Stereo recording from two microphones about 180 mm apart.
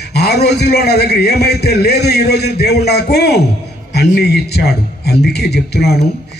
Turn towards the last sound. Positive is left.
turn(degrees=65)  # may be behind; listen again after turning